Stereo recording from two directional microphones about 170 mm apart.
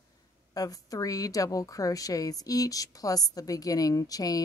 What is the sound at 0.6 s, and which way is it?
A woman's voice, 20° left (ahead or behind).